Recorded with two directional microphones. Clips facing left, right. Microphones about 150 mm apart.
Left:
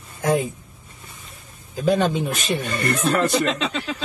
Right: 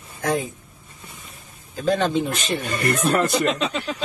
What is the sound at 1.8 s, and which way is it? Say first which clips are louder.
Speech: left 1 dB; 5° left (ahead or behind).